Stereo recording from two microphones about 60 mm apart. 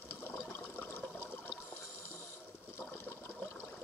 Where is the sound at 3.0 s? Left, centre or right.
Left.